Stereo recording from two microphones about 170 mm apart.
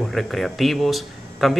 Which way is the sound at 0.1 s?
Centre (ahead or behind).